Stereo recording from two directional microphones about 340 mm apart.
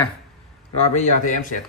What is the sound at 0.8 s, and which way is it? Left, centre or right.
Speech, left.